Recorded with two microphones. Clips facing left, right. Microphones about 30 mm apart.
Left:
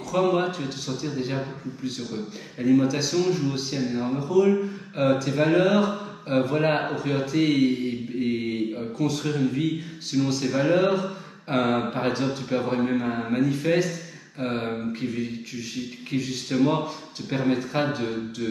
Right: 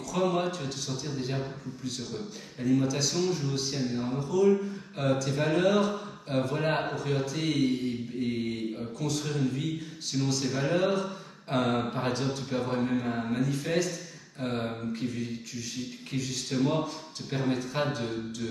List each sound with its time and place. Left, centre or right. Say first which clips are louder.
0.1 s speech: left 5 dB; centre
2.6 s speech: left 6 dB; left